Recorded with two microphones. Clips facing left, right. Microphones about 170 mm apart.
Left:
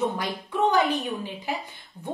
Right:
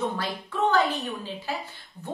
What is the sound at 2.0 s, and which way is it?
Speech, centre (ahead or behind).